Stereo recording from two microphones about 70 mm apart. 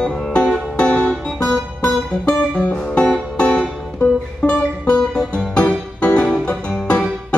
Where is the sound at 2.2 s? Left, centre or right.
Centre.